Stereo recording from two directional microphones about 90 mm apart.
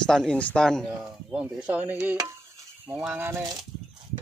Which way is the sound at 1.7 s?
15° right (ahead or behind).